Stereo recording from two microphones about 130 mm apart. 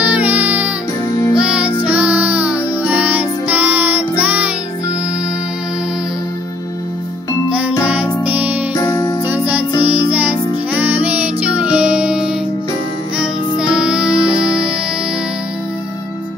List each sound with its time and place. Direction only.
0.0 s music: 10° right (ahead or behind)
7.4 s music: 10° right (ahead or behind)
8.7 s music: 30° left (ahead or behind)
9.3 s music: 10° right (ahead or behind)